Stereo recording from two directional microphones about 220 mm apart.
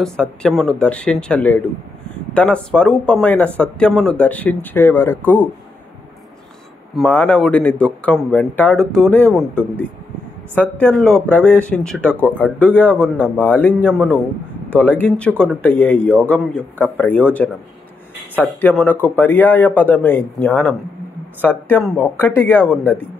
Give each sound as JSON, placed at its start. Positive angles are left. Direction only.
{"t": 0.0, "sound": "speech", "side_deg": 5}
{"t": 7.0, "sound": "a man's voice", "side_deg": 5}